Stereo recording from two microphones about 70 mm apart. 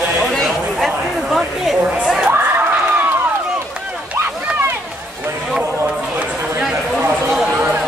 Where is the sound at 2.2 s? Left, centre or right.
Right.